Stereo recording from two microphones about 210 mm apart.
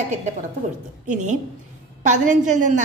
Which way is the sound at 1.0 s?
35° right (ahead or behind).